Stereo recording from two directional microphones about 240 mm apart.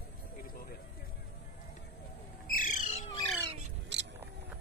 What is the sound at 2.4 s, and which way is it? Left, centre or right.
Owl, left.